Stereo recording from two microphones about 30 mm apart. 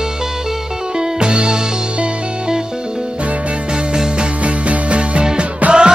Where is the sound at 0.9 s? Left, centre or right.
Right.